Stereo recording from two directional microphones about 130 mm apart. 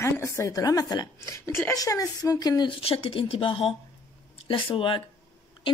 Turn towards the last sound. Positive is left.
turn(degrees=40)  # may be behind; listen again after turning